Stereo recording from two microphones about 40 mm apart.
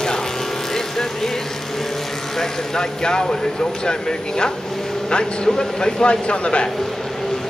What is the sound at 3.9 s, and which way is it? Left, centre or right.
Speech, centre.